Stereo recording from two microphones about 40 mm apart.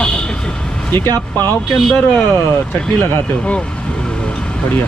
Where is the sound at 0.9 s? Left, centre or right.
Left.